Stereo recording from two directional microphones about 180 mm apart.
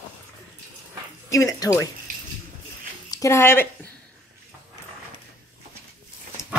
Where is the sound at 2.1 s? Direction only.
50° right (ahead or behind).